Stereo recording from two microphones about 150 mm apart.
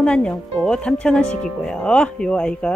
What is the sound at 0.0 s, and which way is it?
Speech, 5° left (ahead or behind).